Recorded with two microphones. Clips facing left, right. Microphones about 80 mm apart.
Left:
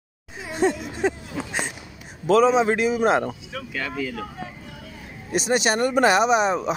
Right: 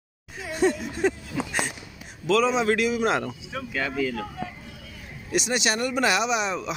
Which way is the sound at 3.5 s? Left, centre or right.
Centre.